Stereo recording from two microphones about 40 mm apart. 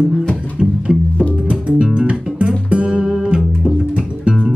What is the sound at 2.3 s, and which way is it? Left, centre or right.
Music, right.